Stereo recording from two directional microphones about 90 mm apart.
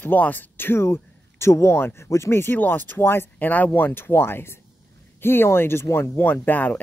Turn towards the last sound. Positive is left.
turn(degrees=20)  # may be behind; listen again after turning